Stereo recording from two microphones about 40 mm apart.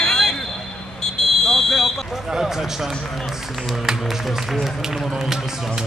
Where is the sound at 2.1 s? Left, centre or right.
Centre.